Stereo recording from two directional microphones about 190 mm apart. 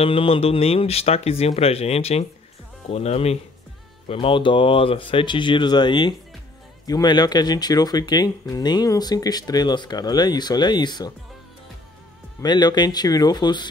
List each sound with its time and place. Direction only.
0.0 s speech: 30° left (ahead or behind)
12.4 s speech: 20° left (ahead or behind)